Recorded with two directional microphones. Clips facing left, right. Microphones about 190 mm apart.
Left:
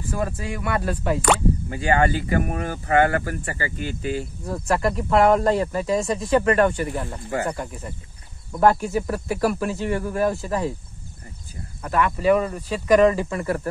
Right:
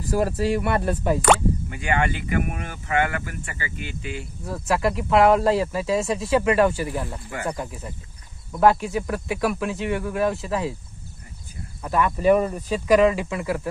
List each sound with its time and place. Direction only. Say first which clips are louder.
0.0 s speech: right 5 dB; 30° right (ahead or behind)
1.7 s speech: left 7 dB; 35° left (ahead or behind)
4.5 s speech: even; 5° right (ahead or behind)
11.8 s speech: even; 15° right (ahead or behind)